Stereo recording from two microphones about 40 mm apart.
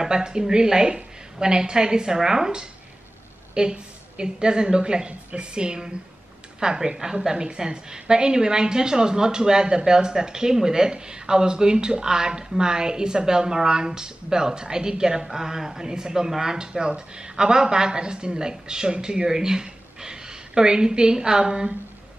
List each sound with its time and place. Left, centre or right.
0.0 s a woman's voice: centre